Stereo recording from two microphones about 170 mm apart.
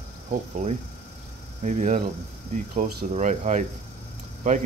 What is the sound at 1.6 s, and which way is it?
Speech, 45° right (ahead or behind).